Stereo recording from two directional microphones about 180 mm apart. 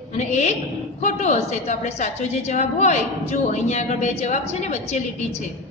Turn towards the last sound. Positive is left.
turn(degrees=40)  # may be behind; listen again after turning